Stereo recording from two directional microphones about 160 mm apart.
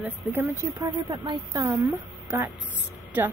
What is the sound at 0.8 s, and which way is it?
Speech, 25° right (ahead or behind).